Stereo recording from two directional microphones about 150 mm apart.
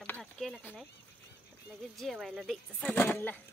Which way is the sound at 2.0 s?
Centre (ahead or behind).